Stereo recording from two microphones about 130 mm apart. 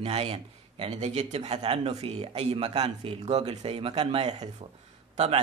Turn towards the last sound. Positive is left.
turn(degrees=-55)  # may be behind; listen again after turning